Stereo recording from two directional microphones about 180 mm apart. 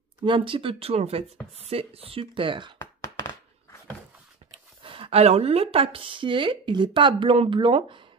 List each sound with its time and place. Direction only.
0.2 s speech: 30° right (ahead or behind)
2.8 s a sound: 20° left (ahead or behind)
4.5 s speech: 30° right (ahead or behind)